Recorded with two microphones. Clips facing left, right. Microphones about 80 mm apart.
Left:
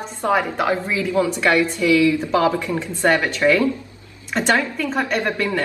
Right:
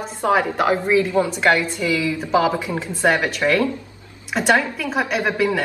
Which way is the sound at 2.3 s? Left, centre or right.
Centre.